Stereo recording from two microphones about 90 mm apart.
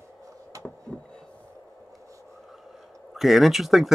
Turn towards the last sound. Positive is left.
turn(degrees=0)  # may be behind; listen again after turning